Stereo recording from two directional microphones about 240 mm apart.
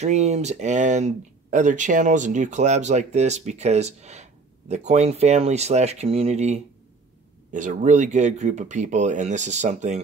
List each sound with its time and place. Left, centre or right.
0.0 s speech: right